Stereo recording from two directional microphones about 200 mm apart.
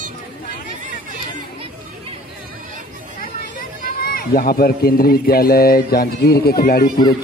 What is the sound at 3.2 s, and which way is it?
A man's voice, 45° left (ahead or behind).